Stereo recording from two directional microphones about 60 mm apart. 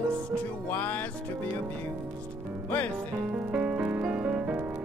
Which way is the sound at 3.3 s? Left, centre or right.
Right.